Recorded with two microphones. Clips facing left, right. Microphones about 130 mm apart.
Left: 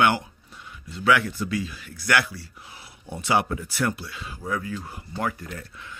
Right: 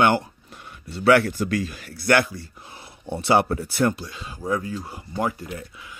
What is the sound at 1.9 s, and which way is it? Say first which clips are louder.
Speech: right 5 dB; 35° right (ahead or behind).